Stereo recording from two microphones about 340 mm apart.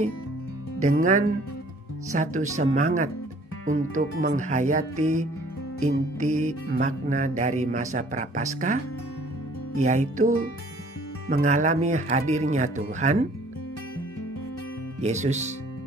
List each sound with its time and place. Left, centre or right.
0.7 s speech: right
9.8 s speech: right
15.0 s speech: centre